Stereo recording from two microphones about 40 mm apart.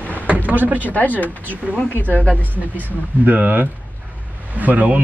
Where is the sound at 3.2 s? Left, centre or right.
Right.